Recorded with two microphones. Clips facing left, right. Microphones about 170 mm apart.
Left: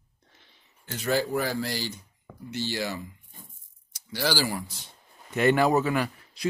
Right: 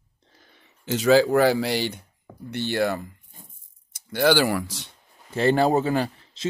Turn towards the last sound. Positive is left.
turn(degrees=-25)  # may be behind; listen again after turning